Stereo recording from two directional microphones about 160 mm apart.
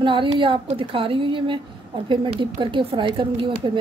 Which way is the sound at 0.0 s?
30° right (ahead or behind).